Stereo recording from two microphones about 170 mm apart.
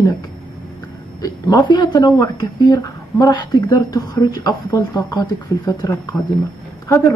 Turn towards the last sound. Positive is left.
turn(degrees=20)  # may be behind; listen again after turning